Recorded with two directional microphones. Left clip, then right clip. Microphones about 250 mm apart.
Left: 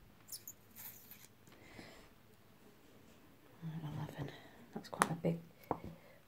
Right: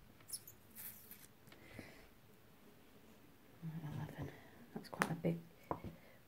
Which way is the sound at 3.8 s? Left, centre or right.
Centre.